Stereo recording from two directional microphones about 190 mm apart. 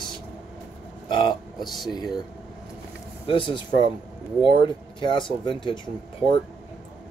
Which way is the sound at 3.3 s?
25° left (ahead or behind).